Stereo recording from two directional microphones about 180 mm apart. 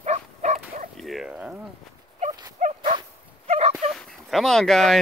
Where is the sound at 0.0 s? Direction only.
40° right (ahead or behind).